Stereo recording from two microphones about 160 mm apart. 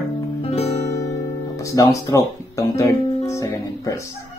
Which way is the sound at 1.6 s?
20° left (ahead or behind).